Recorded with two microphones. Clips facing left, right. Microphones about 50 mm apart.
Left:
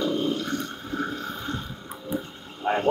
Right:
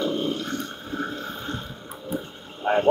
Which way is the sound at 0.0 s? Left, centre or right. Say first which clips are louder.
Even; right.